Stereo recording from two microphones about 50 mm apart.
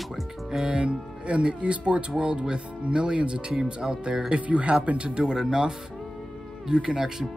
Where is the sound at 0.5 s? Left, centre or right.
Centre.